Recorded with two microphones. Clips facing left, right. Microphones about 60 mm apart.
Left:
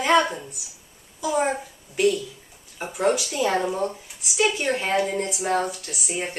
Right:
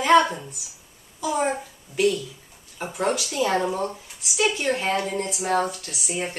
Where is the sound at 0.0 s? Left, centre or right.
Centre.